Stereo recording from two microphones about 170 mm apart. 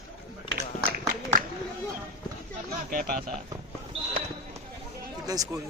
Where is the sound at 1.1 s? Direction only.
55° right (ahead or behind).